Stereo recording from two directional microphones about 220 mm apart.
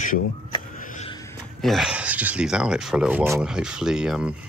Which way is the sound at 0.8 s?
35° left (ahead or behind).